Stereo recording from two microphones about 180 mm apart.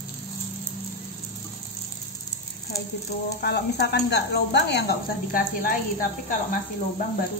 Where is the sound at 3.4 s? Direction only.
65° left (ahead or behind).